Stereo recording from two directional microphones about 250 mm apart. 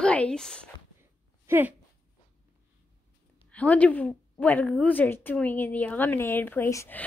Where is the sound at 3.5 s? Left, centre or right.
Centre.